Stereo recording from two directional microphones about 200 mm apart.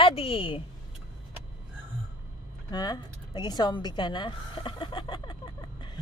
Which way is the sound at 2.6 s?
20° left (ahead or behind).